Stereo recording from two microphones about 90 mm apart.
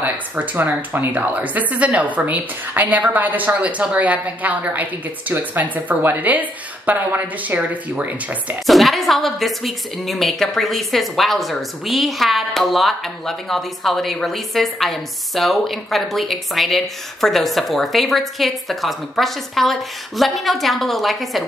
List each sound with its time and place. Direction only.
0.0 s a woman's voice: 20° right (ahead or behind)
8.6 s a woman's voice: centre (ahead or behind)